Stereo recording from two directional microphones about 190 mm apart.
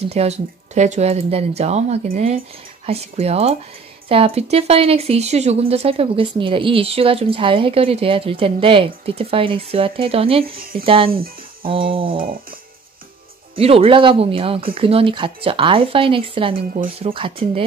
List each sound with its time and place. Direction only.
0.0 s speech: 35° right (ahead or behind)
2.0 s music: 40° right (ahead or behind)
2.9 s speech: 30° right (ahead or behind)
10.6 s music: 50° right (ahead or behind)
11.7 s speech: 30° right (ahead or behind)
12.2 s music: 50° right (ahead or behind)
13.6 s speech: 30° right (ahead or behind)
16.7 s speech: 40° right (ahead or behind)
17.1 s speech: 30° right (ahead or behind)